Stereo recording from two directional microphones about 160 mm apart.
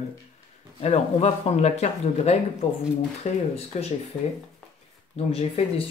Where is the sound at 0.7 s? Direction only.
45° left (ahead or behind).